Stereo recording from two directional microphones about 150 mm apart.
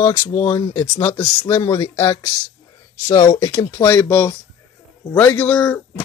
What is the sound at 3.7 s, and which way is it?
Speech, 20° left (ahead or behind).